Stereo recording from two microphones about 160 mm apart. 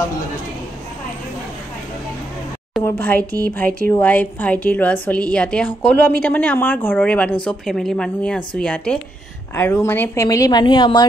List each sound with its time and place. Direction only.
2.8 s a woman's voice: 10° left (ahead or behind); by 11.1 s 25° left (ahead or behind)